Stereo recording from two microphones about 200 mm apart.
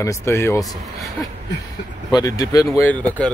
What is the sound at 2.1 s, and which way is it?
Speech, 15° left (ahead or behind).